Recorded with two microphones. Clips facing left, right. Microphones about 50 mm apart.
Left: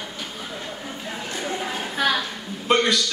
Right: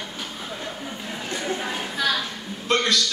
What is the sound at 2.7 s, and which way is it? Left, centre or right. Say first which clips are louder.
Speech: left 2 dB; centre.